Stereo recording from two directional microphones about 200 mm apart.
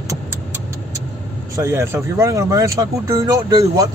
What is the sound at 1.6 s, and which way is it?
Speech, 15° right (ahead or behind).